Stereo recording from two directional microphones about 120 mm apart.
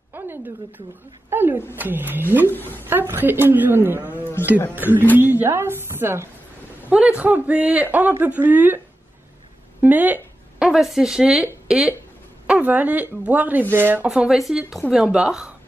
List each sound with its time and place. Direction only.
0.1 s a woman's voice: 15° right (ahead or behind)
2.5 s a woman's voice: 15° left (ahead or behind)
2.9 s speech: 20° right (ahead or behind)
10.6 s speech: 5° right (ahead or behind)
14.0 s speech: 5° right (ahead or behind)